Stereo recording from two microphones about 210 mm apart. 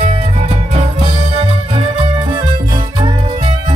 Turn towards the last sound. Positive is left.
turn(degrees=-25)  # may be behind; listen again after turning